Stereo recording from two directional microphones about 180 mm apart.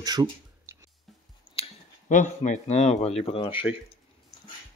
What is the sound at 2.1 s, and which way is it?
Speech, 45° left (ahead or behind).